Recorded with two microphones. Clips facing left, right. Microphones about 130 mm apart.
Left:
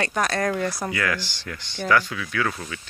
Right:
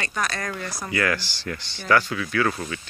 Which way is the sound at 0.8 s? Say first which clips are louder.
Right 1 dB; centre (ahead or behind).